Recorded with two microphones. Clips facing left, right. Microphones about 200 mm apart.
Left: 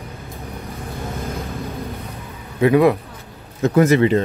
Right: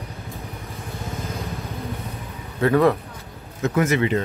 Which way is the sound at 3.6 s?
35° left (ahead or behind).